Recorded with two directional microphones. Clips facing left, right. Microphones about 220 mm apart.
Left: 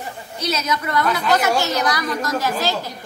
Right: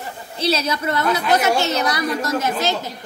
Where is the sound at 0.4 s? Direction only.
30° right (ahead or behind).